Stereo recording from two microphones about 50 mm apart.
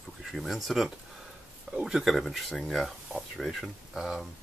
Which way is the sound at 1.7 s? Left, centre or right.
Centre.